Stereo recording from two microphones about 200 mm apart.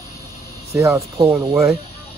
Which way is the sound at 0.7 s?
15° right (ahead or behind).